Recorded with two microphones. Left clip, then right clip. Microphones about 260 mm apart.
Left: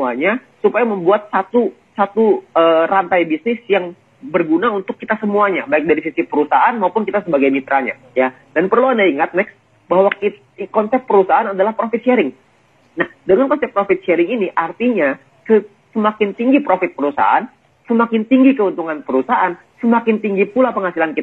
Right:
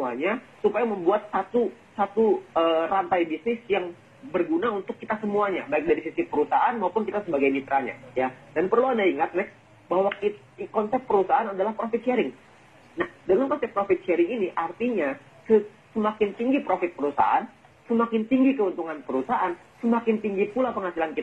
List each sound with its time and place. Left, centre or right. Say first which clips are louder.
0.0 s a man's voice: left 10 dB; left
4.3 s a man's voice: left 10 dB; left